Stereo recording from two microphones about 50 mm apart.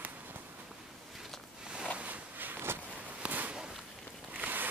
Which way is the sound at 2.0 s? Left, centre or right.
Right.